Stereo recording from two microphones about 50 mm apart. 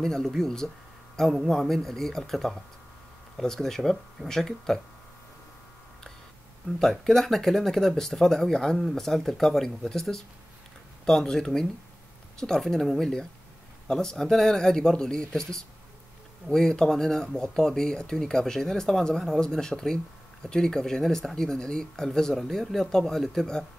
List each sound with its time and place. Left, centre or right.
0.0 s a man's voice: centre
6.8 s speech: centre